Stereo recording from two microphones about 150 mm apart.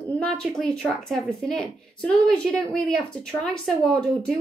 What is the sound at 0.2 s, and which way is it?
A woman's voice, 5° left (ahead or behind).